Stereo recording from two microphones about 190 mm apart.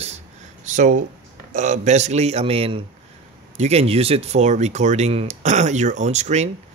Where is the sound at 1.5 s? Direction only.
40° right (ahead or behind).